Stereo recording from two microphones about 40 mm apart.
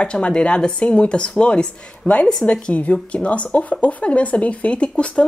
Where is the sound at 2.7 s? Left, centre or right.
Left.